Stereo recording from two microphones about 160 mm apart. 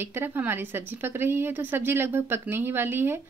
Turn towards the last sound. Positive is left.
turn(degrees=-15)  # may be behind; listen again after turning